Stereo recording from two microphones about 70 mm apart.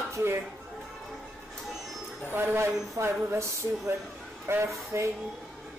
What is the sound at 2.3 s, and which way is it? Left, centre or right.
Speech, right.